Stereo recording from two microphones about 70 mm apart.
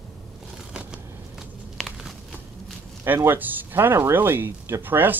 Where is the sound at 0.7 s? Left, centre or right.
Centre.